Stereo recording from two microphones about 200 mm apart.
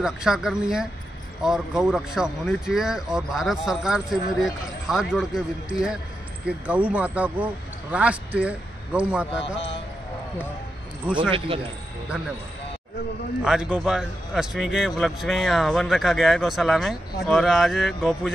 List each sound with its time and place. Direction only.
0.0 s a man's voice: 5° right (ahead or behind)
11.1 s speech: 25° right (ahead or behind)
13.4 s speech: 5° right (ahead or behind)